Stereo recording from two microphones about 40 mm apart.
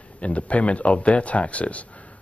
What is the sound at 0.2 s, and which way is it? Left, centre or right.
Speech, left.